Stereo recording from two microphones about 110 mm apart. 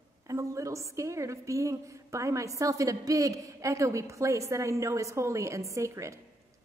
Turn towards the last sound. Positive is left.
turn(degrees=-25)  # may be behind; listen again after turning